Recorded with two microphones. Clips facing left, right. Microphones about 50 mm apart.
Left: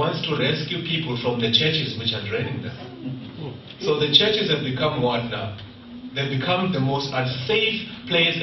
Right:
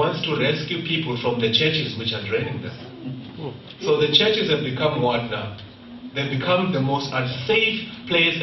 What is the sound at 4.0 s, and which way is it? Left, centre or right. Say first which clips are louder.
A man's voice: even; centre.